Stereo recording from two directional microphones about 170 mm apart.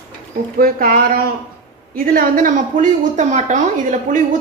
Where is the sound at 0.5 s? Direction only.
60° right (ahead or behind).